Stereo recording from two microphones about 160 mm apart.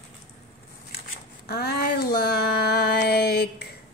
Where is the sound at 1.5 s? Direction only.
75° left (ahead or behind).